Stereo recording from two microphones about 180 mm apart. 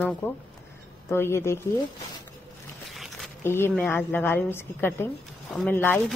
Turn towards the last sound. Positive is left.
turn(degrees=10)  # may be behind; listen again after turning